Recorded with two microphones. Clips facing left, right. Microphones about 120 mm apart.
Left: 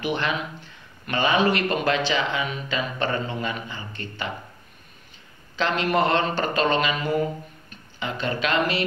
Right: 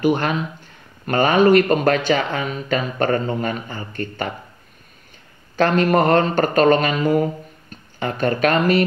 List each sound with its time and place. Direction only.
0.0 s speech: 45° right (ahead or behind)
5.6 s speech: 50° right (ahead or behind)